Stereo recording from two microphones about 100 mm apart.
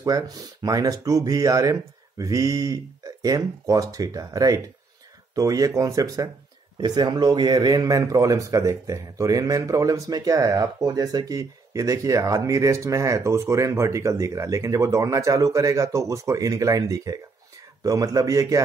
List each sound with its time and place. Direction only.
0.0 s speech: 35° right (ahead or behind)
6.8 s speech: 45° right (ahead or behind)